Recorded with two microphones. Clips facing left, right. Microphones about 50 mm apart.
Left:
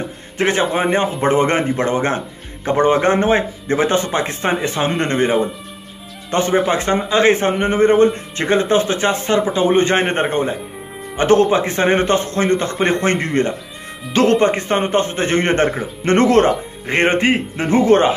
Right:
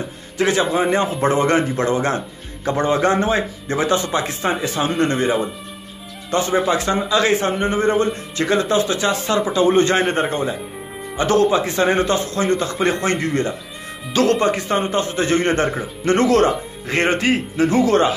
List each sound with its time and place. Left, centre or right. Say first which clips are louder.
0.4 s a man's voice: left 1 dB; left